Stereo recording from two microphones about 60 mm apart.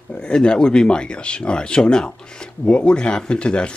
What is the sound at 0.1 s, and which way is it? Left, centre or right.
Speech, centre.